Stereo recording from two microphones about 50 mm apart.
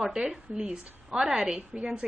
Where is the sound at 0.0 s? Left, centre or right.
Centre.